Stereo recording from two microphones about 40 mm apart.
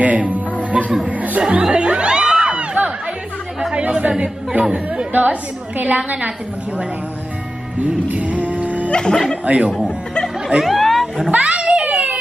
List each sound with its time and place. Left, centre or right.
0.0 s music: right
1.0 s a woman's voice: right
1.7 s music: right
2.6 s a sound: right
3.7 s speech: right
4.1 s speech: centre
4.7 s a woman's voice: right
7.8 s music: right
8.9 s speech: centre
9.4 s a woman's voice: right
10.6 s chatter: centre
11.2 s a sound: right